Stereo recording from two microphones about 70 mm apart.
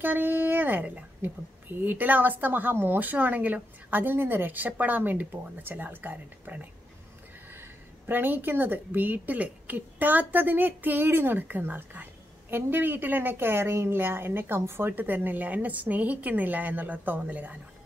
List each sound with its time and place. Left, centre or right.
0.0 s a woman's voice: right
8.1 s a woman's voice: right